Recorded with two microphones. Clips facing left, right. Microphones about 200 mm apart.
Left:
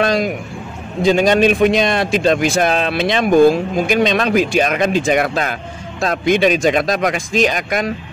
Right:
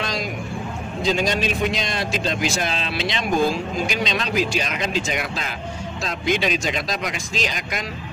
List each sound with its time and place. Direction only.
0.0 s a man's voice: 60° left (ahead or behind)